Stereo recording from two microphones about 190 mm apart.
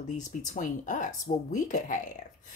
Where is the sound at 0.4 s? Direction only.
40° left (ahead or behind).